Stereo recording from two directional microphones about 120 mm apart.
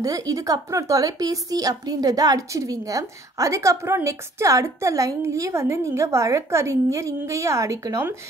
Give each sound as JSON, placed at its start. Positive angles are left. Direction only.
{"t": 0.0, "sound": "a woman's voice", "side_deg": -30}